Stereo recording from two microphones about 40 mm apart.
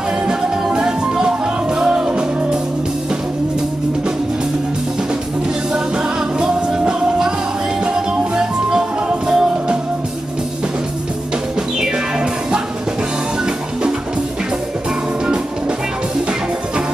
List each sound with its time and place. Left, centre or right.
0.3 s music: centre
6.9 s music: centre
8.4 s music: centre